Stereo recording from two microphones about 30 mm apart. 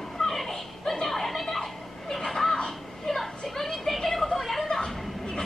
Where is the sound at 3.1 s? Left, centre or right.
Centre.